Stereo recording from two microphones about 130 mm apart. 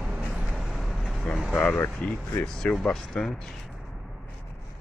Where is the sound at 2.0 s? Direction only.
5° left (ahead or behind).